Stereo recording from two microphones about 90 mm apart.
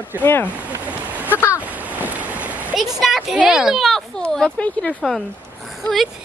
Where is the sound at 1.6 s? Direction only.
15° right (ahead or behind).